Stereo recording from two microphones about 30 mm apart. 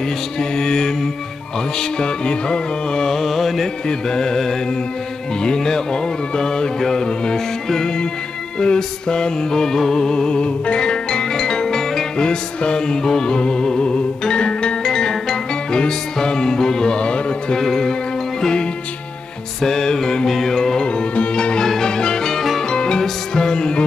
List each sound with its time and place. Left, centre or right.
0.4 s music: left
3.1 s music: centre
3.6 s music: left
12.2 s music: left
14.8 s music: left
16.9 s music: left
17.6 s music: centre
19.6 s music: centre
20.8 s music: left